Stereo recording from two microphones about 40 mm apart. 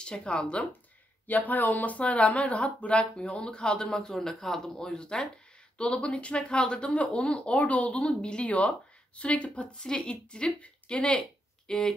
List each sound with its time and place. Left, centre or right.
0.0 s speech: left
1.2 s speech: left
11.1 s a sound: centre